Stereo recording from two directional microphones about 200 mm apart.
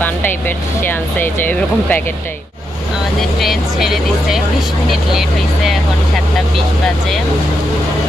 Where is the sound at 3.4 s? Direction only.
Centre (ahead or behind).